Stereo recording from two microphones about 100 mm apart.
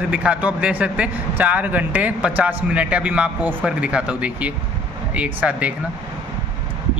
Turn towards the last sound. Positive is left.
turn(degrees=-15)  # may be behind; listen again after turning